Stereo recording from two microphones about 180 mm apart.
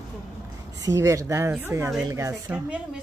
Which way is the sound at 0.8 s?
15° right (ahead or behind).